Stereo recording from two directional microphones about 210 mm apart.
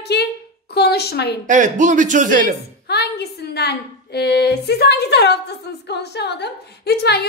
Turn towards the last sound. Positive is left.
turn(degrees=50)  # may be behind; listen again after turning